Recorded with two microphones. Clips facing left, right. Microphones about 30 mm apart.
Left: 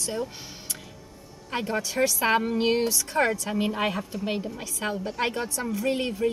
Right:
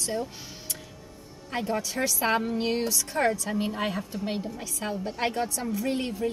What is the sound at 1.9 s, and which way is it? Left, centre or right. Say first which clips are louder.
Speech: left 5 dB; centre.